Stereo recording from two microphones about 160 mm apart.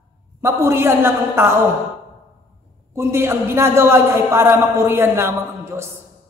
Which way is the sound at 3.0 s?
15° right (ahead or behind).